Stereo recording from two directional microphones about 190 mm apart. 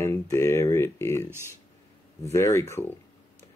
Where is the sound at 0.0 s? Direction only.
15° left (ahead or behind).